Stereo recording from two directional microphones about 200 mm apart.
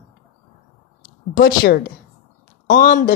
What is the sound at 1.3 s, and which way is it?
A woman's voice, 45° left (ahead or behind).